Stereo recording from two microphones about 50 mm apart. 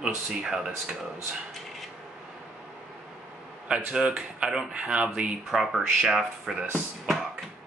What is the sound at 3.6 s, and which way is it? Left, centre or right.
Speech, centre.